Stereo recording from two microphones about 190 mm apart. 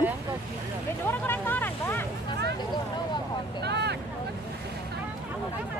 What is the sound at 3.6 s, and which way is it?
Vehicle, 60° right (ahead or behind).